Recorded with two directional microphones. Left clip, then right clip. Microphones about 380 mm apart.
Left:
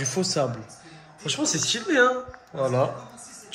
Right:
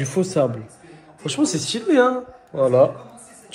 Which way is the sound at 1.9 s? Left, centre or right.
Centre.